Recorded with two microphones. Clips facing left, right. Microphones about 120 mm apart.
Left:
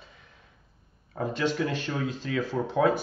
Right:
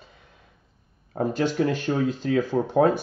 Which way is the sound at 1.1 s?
40° right (ahead or behind).